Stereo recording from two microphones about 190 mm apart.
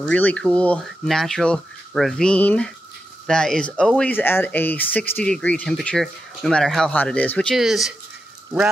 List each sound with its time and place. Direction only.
0.0 s speech: 5° left (ahead or behind)